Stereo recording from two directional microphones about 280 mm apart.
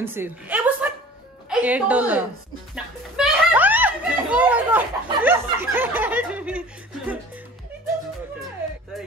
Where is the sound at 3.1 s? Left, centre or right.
Centre.